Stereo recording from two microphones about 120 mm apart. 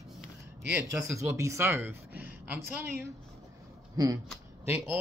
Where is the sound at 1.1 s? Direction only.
25° right (ahead or behind).